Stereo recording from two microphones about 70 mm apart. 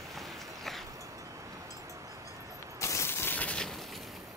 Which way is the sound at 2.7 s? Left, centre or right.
Left.